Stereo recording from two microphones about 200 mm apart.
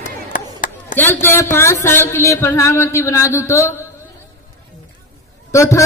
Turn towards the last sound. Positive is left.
turn(degrees=15)  # may be behind; listen again after turning